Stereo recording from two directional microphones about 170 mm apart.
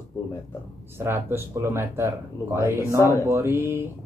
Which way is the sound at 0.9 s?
15° right (ahead or behind).